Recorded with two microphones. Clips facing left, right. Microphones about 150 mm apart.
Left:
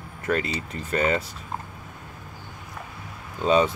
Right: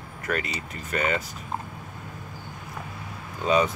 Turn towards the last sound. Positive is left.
turn(degrees=30)  # may be behind; listen again after turning